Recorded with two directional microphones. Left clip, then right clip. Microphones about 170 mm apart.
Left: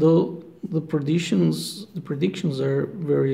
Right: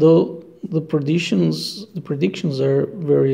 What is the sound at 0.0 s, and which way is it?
Speech, 15° right (ahead or behind).